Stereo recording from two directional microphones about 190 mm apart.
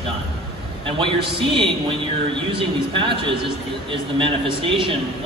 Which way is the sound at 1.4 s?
25° right (ahead or behind).